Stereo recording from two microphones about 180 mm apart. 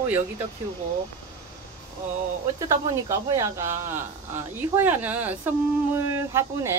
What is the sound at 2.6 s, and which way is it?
Speech, 15° right (ahead or behind).